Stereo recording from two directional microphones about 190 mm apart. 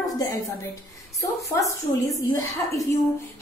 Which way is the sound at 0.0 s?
20° left (ahead or behind).